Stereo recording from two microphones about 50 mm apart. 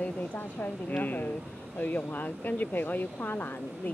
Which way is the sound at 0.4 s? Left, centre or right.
Left.